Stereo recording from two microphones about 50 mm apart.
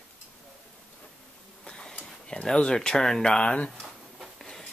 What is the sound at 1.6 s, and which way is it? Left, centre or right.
Printer, centre.